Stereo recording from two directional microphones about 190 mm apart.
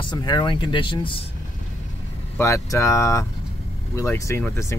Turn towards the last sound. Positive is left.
turn(degrees=15)  # may be behind; listen again after turning